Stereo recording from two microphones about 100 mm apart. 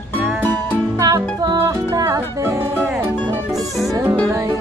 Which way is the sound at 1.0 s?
40° right (ahead or behind).